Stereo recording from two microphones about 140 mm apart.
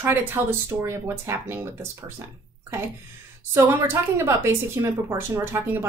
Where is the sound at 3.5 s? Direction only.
20° right (ahead or behind).